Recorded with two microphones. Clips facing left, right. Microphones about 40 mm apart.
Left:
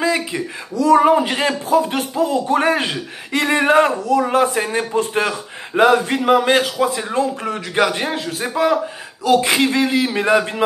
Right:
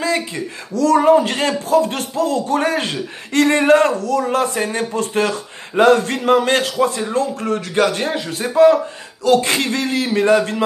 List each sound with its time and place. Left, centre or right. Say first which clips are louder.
0.0 s speech: left 1 dB; centre
9.2 s speech: even; centre